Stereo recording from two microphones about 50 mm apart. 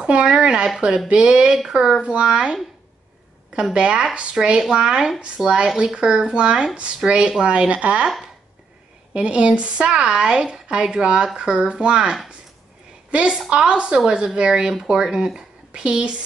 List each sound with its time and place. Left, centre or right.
0.0 s speech: right
3.7 s a woman's voice: centre
9.1 s a woman's voice: right